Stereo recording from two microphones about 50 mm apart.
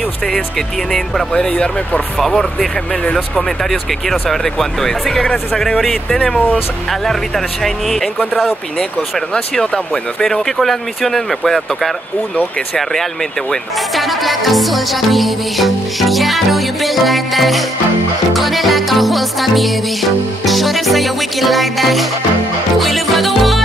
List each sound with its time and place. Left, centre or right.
1.3 s speech: centre
2.1 s music: centre
4.1 s speech: centre
6.9 s music: centre
10.2 s music: centre
13.9 s music: centre